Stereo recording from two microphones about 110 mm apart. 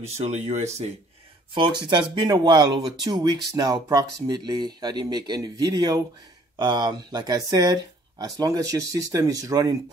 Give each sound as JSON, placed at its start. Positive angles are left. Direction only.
{"t": 0.0, "sound": "speech", "side_deg": -85}
{"t": 1.5, "sound": "speech", "side_deg": -45}